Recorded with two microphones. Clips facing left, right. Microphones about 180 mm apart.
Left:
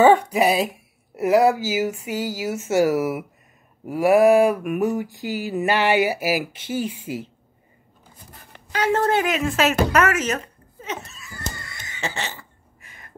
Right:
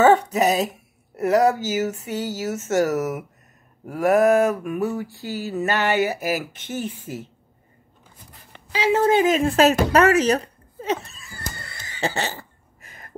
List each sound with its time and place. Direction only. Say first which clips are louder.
0.0 s mantra: left 1 dB; 10° left (ahead or behind)
8.7 s a woman's voice: right 2 dB; 10° right (ahead or behind)
9.3 s speech: right 4 dB; 35° right (ahead or behind)
11.1 s a sound: left 2 dB; 30° right (ahead or behind)
11.6 s cough: right 9 dB; 30° right (ahead or behind)